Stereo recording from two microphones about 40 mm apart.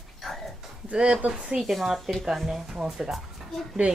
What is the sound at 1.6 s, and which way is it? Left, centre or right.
A woman's voice, centre.